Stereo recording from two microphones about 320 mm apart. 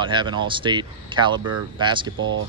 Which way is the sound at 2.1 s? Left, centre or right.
Right.